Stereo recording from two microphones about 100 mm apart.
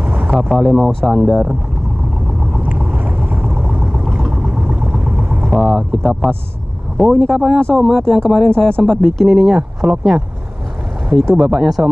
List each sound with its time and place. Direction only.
0.0 s vehicle: 20° right (ahead or behind)
0.6 s speech: 5° right (ahead or behind)
2.6 s boat: 15° right (ahead or behind)
3.5 s a sound: 15° right (ahead or behind)
3.8 s a sound: centre (ahead or behind)
4.6 s vehicle: 10° right (ahead or behind)
5.5 s speech: centre (ahead or behind)
11.3 s speech: 5° right (ahead or behind)